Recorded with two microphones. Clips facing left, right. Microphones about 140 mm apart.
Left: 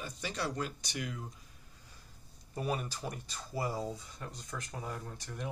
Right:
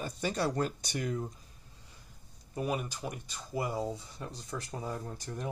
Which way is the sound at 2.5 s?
10° right (ahead or behind).